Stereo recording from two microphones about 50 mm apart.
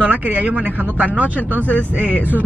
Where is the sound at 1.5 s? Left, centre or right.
Left.